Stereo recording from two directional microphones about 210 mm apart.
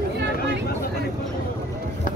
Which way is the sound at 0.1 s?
55° right (ahead or behind).